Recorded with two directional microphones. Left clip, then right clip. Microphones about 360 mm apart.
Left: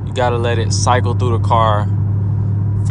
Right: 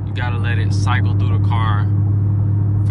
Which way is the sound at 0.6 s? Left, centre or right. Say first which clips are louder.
Left 6 dB; centre.